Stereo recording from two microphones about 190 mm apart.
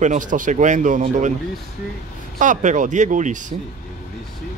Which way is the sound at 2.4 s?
40° right (ahead or behind).